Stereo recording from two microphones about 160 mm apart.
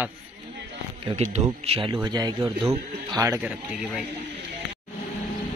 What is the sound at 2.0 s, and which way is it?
A man's voice, 25° right (ahead or behind).